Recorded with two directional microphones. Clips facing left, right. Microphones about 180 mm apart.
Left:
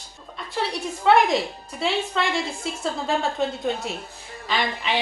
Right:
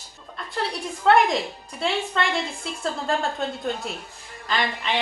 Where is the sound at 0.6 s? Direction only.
Centre (ahead or behind).